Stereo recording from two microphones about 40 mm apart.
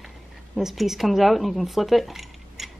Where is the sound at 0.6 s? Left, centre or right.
Centre.